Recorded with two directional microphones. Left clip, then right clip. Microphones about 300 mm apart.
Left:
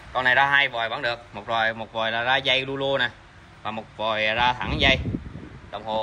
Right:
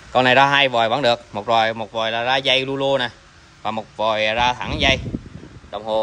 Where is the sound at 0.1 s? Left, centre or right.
Right.